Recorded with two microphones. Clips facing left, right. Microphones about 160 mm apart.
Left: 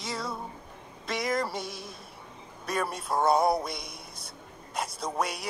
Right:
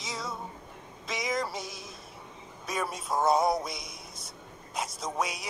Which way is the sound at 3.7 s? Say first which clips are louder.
Left 2 dB; 60° left (ahead or behind).